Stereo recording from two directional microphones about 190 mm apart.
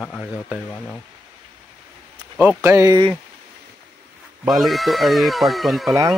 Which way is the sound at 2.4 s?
10° right (ahead or behind).